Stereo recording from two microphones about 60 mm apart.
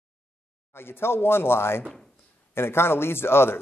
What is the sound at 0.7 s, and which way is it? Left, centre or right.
A man's voice, left.